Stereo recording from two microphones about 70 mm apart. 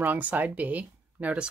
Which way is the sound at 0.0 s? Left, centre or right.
Right.